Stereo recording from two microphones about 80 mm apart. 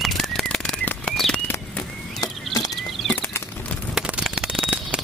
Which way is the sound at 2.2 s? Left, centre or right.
Left.